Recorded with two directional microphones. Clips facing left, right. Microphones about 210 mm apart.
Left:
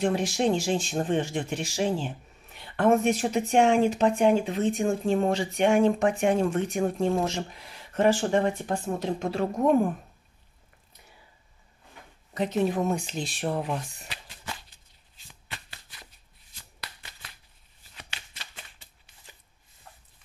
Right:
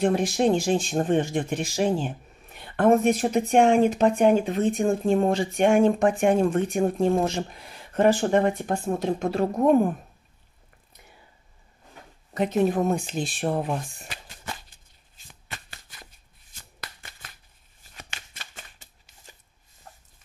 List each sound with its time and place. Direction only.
0.0 s speech: 55° right (ahead or behind)
12.4 s speech: 50° right (ahead or behind)
15.4 s shuffling cards: 45° right (ahead or behind)
19.9 s a sound: 45° right (ahead or behind)